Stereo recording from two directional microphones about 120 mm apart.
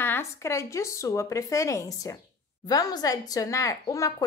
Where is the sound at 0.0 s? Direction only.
20° left (ahead or behind).